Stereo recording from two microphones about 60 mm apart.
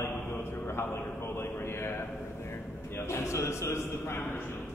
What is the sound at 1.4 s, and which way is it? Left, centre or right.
Speech, left.